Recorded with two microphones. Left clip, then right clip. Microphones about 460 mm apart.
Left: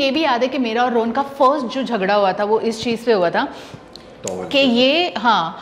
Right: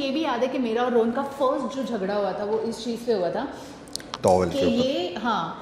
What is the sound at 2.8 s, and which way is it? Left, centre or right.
Speech, left.